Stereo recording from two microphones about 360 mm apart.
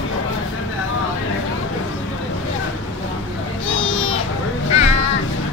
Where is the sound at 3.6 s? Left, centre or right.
Left.